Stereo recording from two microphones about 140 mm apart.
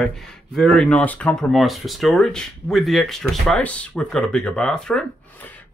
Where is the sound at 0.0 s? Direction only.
5° left (ahead or behind).